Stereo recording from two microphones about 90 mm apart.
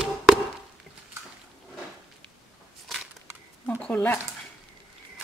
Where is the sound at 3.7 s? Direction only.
20° left (ahead or behind).